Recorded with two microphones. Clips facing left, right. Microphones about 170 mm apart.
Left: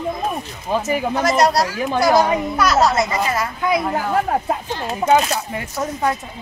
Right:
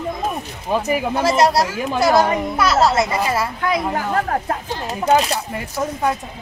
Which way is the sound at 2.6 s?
25° right (ahead or behind).